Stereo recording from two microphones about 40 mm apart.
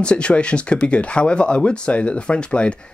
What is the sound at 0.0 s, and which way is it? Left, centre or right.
Speech, left.